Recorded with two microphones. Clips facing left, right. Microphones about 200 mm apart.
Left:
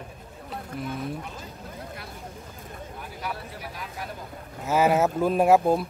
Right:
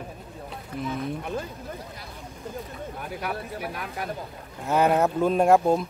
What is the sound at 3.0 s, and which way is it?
Speech, 55° right (ahead or behind).